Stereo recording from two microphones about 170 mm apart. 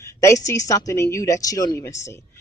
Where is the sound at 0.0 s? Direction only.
15° left (ahead or behind).